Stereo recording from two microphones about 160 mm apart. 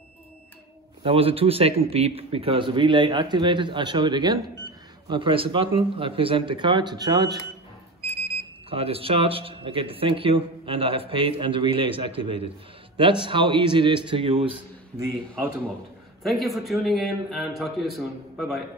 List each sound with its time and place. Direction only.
1.0 s a man's voice: 35° right (ahead or behind)
8.6 s speech: 35° right (ahead or behind)
16.2 s a man's voice: centre (ahead or behind)